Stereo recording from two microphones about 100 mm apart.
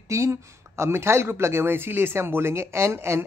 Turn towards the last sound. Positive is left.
turn(degrees=-25)  # may be behind; listen again after turning